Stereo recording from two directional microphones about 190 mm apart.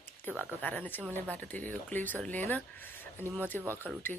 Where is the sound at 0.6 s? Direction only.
10° left (ahead or behind).